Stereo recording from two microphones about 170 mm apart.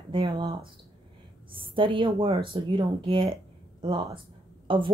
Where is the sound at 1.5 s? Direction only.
30° right (ahead or behind).